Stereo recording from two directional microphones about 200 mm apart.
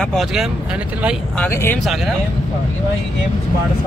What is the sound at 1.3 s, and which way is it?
Speech, 10° left (ahead or behind).